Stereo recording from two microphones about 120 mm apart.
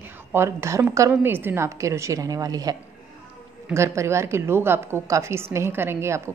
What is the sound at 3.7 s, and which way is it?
A woman's voice, 25° right (ahead or behind).